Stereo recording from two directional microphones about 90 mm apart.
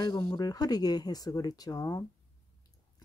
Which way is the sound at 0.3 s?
45° left (ahead or behind).